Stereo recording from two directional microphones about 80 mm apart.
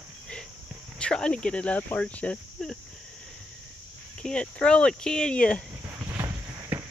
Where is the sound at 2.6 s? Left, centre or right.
Centre.